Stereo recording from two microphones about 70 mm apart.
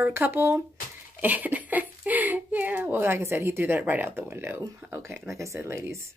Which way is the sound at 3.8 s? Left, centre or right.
Right.